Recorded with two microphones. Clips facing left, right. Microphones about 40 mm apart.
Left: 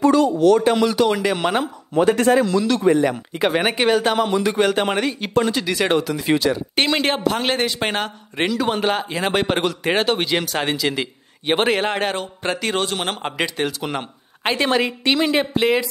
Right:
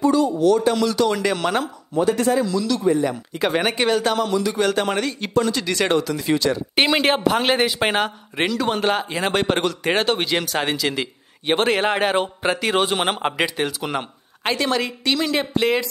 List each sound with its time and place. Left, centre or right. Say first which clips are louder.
0.0 s speech: left 2 dB; left
0.7 s speech: left 2 dB; left
2.0 s a man's voice: left 3 dB; left
2.8 s speech: left 3 dB; left
3.5 s speech: left 1 dB; centre; by 4.6 s left
4.6 s speech: left 1 dB; centre
6.7 s a man's voice: right 5 dB; centre
14.6 s speech: left 4 dB; left
15.5 s speech: left 1 dB; centre